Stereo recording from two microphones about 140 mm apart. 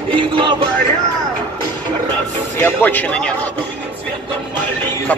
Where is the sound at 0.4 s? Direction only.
35° right (ahead or behind).